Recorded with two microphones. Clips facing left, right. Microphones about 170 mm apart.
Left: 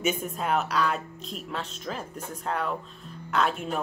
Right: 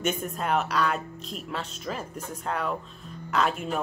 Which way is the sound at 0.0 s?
Centre (ahead or behind).